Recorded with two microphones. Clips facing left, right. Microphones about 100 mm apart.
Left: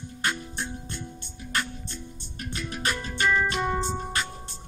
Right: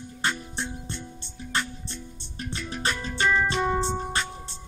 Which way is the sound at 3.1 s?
Centre (ahead or behind).